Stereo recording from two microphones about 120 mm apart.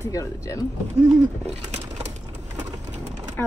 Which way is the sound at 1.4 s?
65° right (ahead or behind).